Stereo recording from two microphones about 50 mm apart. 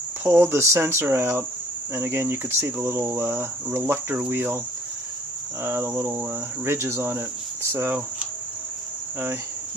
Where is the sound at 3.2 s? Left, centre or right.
Right.